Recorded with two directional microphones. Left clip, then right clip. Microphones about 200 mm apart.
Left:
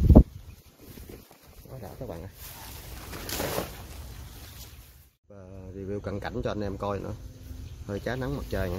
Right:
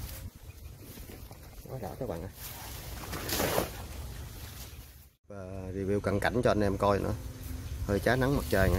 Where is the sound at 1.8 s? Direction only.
Centre (ahead or behind).